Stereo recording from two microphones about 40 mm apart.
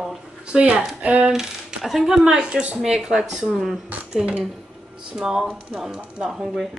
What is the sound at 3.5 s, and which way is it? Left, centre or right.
Speech, centre.